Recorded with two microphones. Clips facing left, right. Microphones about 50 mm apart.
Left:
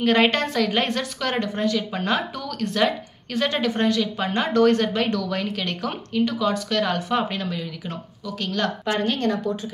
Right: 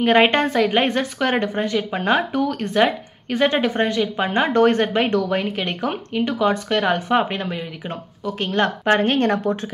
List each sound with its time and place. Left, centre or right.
0.0 s a woman's voice: right